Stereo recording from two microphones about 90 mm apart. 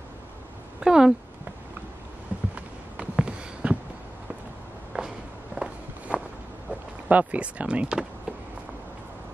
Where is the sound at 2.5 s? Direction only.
10° right (ahead or behind).